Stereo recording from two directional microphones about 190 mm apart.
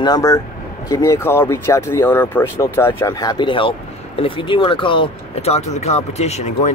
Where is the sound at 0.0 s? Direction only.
20° left (ahead or behind).